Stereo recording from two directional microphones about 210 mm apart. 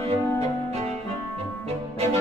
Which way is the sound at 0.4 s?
30° right (ahead or behind).